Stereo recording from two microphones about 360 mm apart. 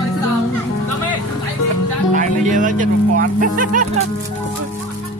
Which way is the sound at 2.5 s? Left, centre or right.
Right.